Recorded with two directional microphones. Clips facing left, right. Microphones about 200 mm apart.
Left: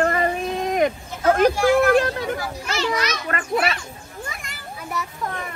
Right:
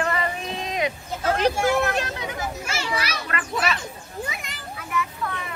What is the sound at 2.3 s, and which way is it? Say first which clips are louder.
Speech: left 2 dB; 20° right (ahead or behind).